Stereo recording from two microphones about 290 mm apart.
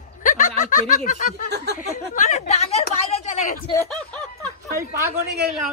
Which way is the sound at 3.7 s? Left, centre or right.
Centre.